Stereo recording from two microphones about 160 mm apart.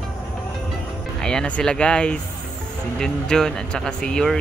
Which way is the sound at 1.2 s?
5° left (ahead or behind).